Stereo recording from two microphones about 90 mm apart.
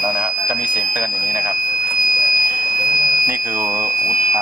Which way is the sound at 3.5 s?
5° right (ahead or behind).